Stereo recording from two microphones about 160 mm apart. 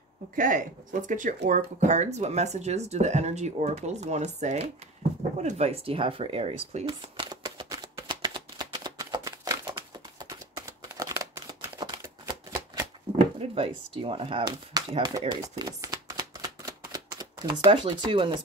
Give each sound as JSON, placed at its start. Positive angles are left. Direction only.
{"t": 0.4, "sound": "speech", "side_deg": -55}
{"t": 5.4, "sound": "a sound", "side_deg": -45}
{"t": 13.4, "sound": "speech", "side_deg": -35}